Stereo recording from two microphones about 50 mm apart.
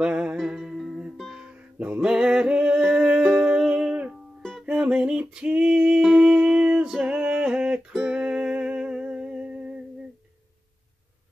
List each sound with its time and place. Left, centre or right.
0.0 s music: centre
2.0 s music: centre
4.4 s music: centre
4.6 s music: right
5.3 s female singing: centre
6.1 s music: centre